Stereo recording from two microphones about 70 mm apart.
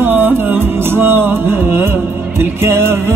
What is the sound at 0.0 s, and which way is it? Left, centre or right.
Music, right.